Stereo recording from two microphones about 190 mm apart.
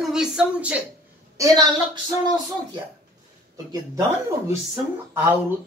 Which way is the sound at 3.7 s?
15° right (ahead or behind).